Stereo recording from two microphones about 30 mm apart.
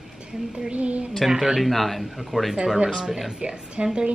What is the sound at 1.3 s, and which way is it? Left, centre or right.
Speech, right.